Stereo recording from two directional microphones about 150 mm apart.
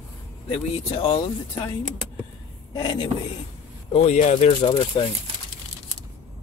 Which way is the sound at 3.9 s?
50° left (ahead or behind).